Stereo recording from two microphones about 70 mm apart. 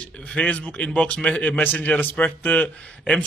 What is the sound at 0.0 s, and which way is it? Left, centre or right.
A man's voice, centre.